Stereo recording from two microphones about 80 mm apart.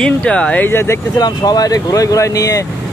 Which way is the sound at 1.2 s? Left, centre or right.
Left.